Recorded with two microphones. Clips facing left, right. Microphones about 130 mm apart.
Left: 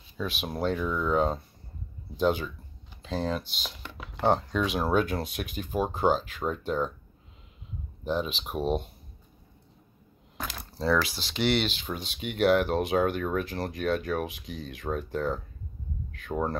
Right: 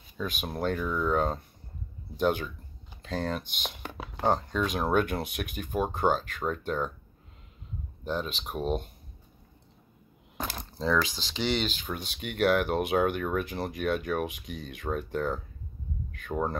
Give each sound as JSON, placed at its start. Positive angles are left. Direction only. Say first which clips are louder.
{"t": 0.4, "sound": "speech", "louder": "left 2 dB", "side_deg": 0}
{"t": 3.6, "sound": "speech", "louder": "right 3 dB", "side_deg": -50}
{"t": 4.5, "sound": "speech", "louder": "left 1 dB", "side_deg": 5}
{"t": 8.0, "sound": "speech", "louder": "left 3 dB", "side_deg": 5}
{"t": 10.6, "sound": "speech", "louder": "left 2 dB", "side_deg": 5}